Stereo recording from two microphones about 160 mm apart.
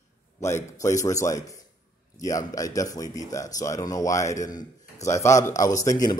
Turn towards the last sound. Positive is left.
turn(degrees=20)  # may be behind; listen again after turning